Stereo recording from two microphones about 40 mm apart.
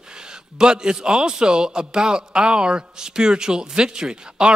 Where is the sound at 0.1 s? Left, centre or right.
Centre.